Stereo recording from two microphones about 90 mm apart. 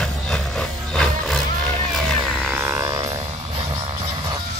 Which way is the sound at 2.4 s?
30° right (ahead or behind).